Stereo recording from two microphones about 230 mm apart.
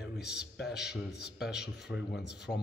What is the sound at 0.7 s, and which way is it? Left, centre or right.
A man's voice, left.